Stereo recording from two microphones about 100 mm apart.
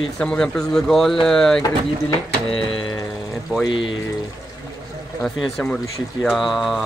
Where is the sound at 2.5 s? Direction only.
65° left (ahead or behind).